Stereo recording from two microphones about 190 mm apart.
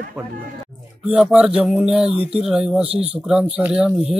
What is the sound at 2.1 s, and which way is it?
Speech, 30° right (ahead or behind).